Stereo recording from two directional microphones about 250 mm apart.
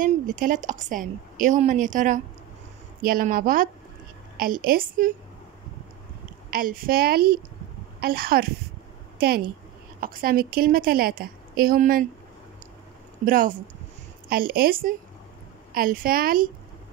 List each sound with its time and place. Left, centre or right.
0.0 s a woman's voice: right
6.5 s a woman's voice: right
9.9 s a woman's voice: right
13.2 s a woman's voice: right